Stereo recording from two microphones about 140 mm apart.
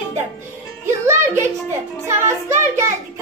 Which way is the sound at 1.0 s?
20° right (ahead or behind).